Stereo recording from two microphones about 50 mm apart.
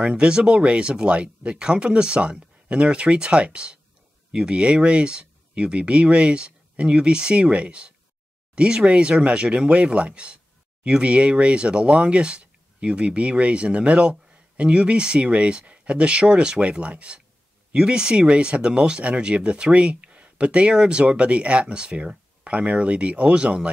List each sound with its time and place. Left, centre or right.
0.0 s speech: centre